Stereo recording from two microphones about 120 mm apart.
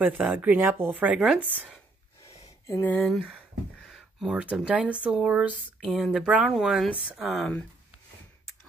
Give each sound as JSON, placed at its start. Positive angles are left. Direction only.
{"t": 0.2, "sound": "speech", "side_deg": -10}
{"t": 2.2, "sound": "a sound", "side_deg": 20}
{"t": 3.8, "sound": "speech", "side_deg": 0}
{"t": 7.3, "sound": "speech", "side_deg": 5}